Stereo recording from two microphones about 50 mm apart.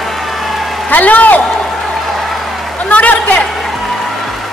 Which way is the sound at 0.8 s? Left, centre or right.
Left.